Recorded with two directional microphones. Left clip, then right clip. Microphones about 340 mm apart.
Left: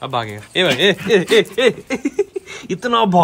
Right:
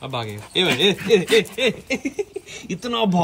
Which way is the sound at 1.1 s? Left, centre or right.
Centre.